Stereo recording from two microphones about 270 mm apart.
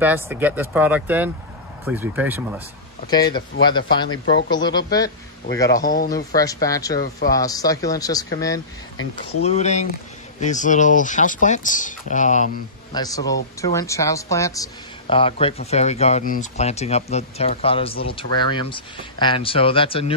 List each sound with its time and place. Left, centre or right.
0.0 s speech: centre
3.1 s speech: centre
5.9 s speech: left
6.1 s speech: centre
9.1 s a woman's voice: left
12.9 s a woman's voice: centre